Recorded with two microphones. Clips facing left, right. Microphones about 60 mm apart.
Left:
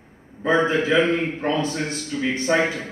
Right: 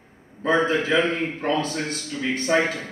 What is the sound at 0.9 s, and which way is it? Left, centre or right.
Speech, centre.